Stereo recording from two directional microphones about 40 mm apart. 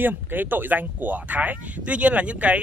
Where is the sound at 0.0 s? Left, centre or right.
Right.